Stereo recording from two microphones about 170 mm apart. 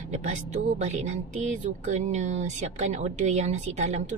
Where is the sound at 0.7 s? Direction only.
40° right (ahead or behind).